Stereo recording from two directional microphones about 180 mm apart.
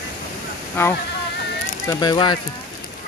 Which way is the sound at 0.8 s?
15° left (ahead or behind).